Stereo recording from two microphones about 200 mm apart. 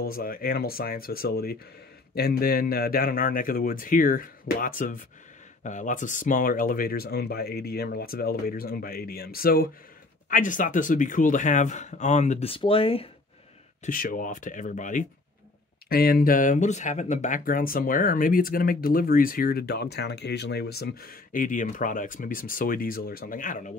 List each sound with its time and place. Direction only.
0.0 s speech: 45° left (ahead or behind); by 13.1 s 30° left (ahead or behind)
13.8 s speech: 45° left (ahead or behind)